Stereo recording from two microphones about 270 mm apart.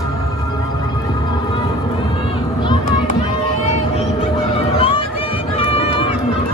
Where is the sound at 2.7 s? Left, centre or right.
Left.